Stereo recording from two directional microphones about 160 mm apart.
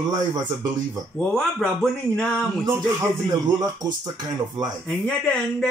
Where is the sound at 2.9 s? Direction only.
20° right (ahead or behind).